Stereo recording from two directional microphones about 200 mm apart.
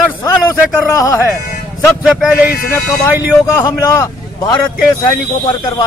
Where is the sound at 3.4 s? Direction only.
15° left (ahead or behind).